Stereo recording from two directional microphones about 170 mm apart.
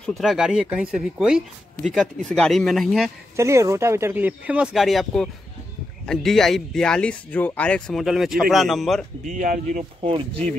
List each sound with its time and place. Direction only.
0.0 s speech: centre (ahead or behind)
3.3 s speech: 15° right (ahead or behind); by 9.0 s centre (ahead or behind)
9.2 s speech: 50° right (ahead or behind)